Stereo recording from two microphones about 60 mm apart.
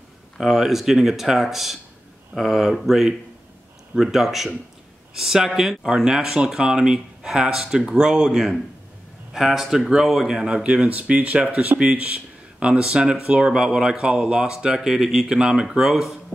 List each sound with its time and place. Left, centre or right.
0.4 s speech: centre